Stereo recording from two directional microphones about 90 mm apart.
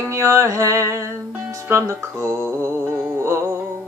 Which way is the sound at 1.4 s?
35° right (ahead or behind).